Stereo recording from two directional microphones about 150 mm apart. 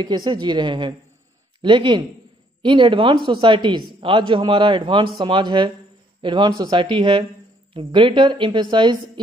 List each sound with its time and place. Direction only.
0.0 s a woman's voice: 30° right (ahead or behind)